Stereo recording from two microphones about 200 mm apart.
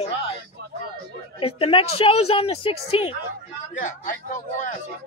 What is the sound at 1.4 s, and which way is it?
Speech, 30° left (ahead or behind).